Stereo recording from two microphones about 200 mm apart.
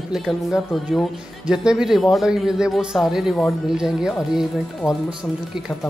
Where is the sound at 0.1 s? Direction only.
Centre (ahead or behind).